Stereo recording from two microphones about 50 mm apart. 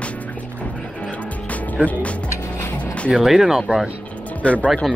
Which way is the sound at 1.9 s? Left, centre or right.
Left.